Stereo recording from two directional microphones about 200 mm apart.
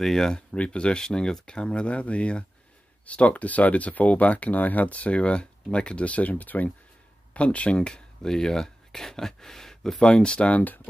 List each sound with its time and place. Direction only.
0.0 s speech: centre (ahead or behind)